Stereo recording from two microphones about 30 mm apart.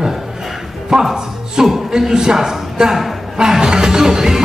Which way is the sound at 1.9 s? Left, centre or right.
Right.